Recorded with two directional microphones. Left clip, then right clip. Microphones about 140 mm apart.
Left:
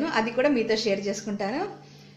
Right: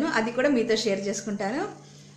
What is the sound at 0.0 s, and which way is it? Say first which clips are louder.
A woman's voice: even; 10° right (ahead or behind).